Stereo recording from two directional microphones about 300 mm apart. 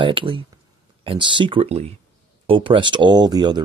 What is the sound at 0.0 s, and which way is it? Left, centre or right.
Speech, centre.